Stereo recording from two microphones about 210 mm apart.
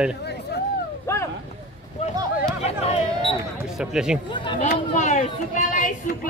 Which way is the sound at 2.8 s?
25° left (ahead or behind).